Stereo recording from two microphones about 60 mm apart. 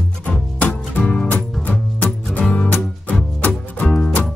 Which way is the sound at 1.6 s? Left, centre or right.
Left.